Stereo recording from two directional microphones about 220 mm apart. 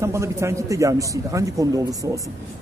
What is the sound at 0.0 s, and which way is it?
Speech, 15° right (ahead or behind).